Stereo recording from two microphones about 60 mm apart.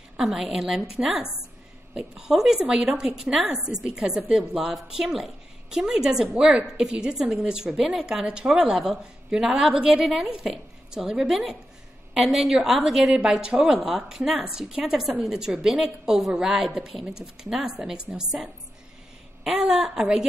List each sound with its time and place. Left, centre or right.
0.2 s a woman's voice: centre
2.2 s a woman's voice: centre